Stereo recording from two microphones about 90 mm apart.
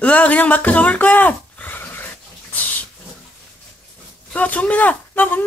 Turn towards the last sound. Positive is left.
turn(degrees=20)  # may be behind; listen again after turning